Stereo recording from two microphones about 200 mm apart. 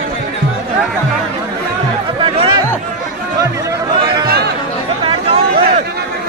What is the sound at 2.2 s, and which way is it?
Music, 25° right (ahead or behind).